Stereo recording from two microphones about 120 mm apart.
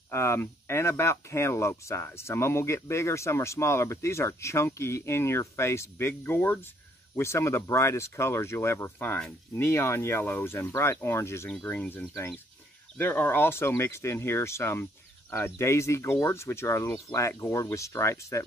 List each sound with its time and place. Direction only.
0.1 s speech: 25° left (ahead or behind)
11.5 s speech: 10° left (ahead or behind)